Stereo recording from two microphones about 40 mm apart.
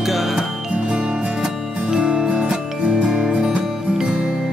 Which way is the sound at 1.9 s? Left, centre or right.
Right.